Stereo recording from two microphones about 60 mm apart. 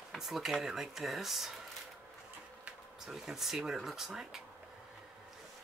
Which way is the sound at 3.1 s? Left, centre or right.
Centre.